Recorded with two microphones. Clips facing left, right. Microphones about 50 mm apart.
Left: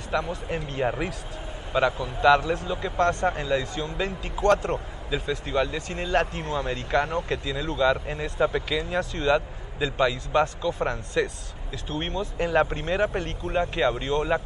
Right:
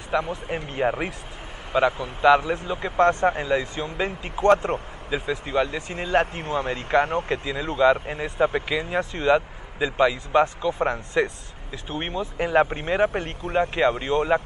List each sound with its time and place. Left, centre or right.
0.1 s speech: centre
6.4 s speech: right
7.4 s speech: right